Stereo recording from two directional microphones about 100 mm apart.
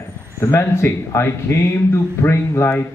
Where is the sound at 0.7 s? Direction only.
25° left (ahead or behind).